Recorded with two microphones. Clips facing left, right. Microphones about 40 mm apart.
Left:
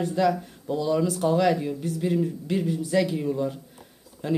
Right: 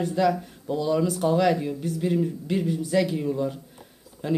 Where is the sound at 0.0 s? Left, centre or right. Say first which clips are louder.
Even; centre.